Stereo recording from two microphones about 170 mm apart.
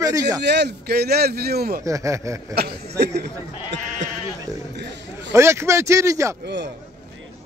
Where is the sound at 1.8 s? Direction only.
20° right (ahead or behind).